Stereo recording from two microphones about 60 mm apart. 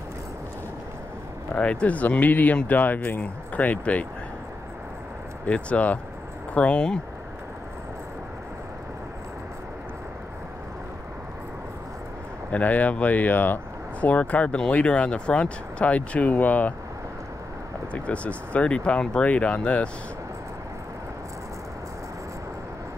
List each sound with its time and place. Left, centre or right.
1.5 s speech: centre
5.5 s speech: left
12.4 s speech: left
17.9 s speech: left